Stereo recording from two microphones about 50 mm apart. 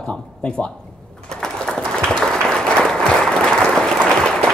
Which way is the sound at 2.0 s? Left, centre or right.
Centre.